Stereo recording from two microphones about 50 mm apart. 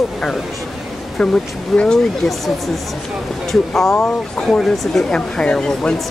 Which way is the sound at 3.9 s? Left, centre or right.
Centre.